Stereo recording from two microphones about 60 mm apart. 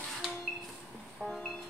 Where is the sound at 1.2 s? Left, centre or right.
Centre.